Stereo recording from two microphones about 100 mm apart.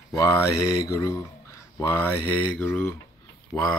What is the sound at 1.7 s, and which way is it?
Speech, 25° left (ahead or behind).